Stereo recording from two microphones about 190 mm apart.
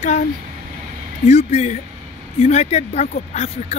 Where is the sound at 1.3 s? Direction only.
35° left (ahead or behind).